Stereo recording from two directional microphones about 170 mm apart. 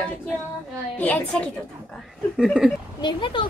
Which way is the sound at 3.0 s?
25° left (ahead or behind).